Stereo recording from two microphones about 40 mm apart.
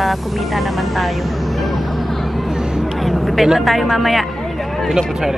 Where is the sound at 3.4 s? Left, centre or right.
Centre.